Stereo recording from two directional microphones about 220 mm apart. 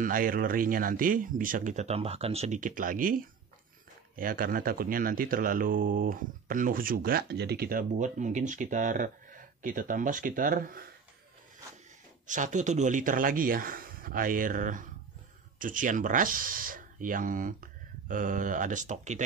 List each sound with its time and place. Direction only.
0.0 s speech: 40° right (ahead or behind)
4.2 s speech: 40° right (ahead or behind)
12.3 s speech: 35° right (ahead or behind)